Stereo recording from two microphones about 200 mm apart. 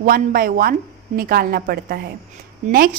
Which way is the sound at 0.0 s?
45° right (ahead or behind).